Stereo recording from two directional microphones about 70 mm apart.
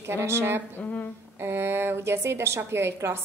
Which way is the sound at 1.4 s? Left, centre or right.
Right.